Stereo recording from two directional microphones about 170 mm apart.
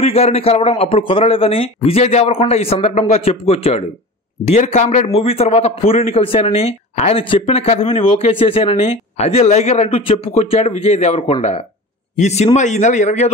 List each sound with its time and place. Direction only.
0.0 s a man's voice: 35° left (ahead or behind)